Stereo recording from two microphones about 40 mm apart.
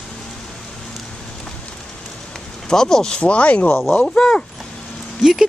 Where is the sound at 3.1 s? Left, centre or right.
Left.